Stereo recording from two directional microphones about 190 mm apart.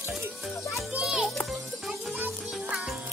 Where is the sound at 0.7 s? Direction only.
Centre (ahead or behind).